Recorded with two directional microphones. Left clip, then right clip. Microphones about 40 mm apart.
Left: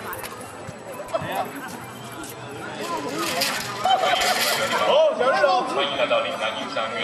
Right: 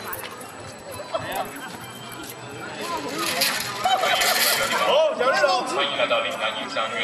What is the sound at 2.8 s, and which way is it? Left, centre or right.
A man's voice, centre.